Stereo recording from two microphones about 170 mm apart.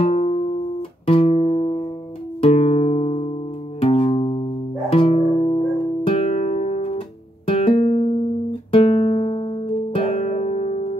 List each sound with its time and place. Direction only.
0.0 s music: 40° left (ahead or behind)